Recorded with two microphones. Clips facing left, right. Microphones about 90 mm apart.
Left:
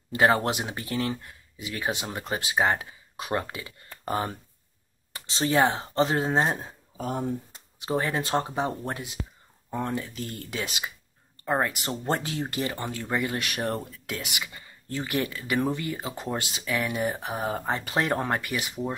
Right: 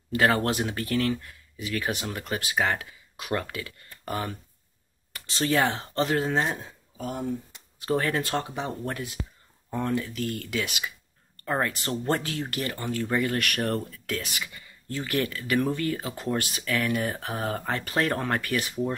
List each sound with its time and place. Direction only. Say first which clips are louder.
0.1 s speech: left 1 dB; 25° left (ahead or behind)
8.0 s speech: left 1 dB; 20° left (ahead or behind)
11.4 s speech: left 1 dB; 15° left (ahead or behind)